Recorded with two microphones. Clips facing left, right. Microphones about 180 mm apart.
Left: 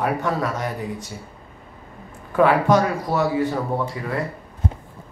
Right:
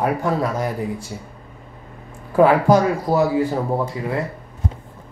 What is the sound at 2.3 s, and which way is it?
A man's voice, 30° right (ahead or behind).